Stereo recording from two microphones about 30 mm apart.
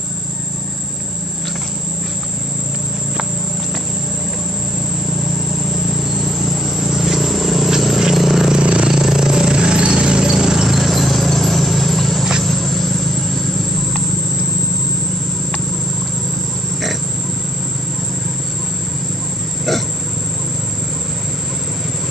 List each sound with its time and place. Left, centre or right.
5.6 s vehicle: centre
8.2 s a sound: centre
8.5 s vehicle: right
8.8 s vehicle: centre
10.8 s a sound: centre
12.4 s vehicle: centre